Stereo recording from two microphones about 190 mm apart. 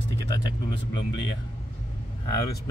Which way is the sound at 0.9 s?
70° left (ahead or behind).